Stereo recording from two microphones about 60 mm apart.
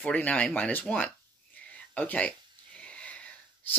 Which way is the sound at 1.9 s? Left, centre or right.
Left.